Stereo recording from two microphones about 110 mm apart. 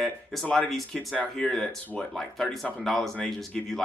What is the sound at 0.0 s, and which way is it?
Speech, centre (ahead or behind).